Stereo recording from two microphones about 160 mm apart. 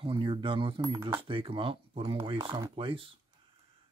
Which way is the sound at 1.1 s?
30° right (ahead or behind).